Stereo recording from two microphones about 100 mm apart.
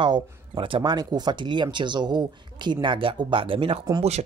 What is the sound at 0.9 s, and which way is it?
Speech, 45° right (ahead or behind).